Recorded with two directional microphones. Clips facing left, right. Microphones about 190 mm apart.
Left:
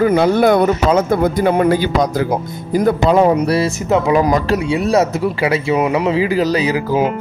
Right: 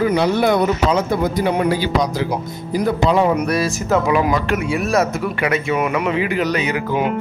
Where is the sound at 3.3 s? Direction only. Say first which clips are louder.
Left 3 dB; 30° left (ahead or behind).